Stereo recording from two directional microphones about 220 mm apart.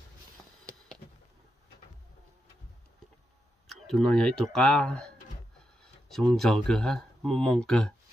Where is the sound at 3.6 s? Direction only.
Centre (ahead or behind).